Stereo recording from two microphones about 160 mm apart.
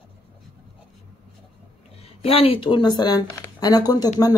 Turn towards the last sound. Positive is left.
turn(degrees=25)  # may be behind; listen again after turning